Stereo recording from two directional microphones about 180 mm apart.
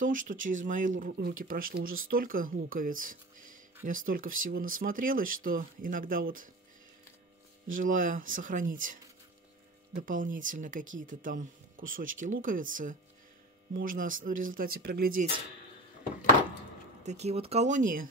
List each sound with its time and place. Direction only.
0.0 s speech: 45° right (ahead or behind)
7.7 s speech: 50° right (ahead or behind)
17.0 s speech: 40° right (ahead or behind)